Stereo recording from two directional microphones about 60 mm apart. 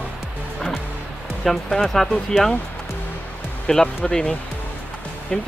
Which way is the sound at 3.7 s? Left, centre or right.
Centre.